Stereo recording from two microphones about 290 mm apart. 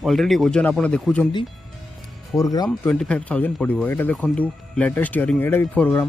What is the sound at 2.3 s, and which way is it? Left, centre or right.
Speech, centre.